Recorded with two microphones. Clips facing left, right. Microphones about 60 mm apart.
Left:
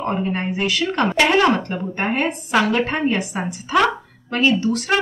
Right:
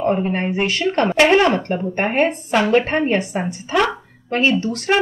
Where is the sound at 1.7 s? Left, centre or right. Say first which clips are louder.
Right 2 dB; right.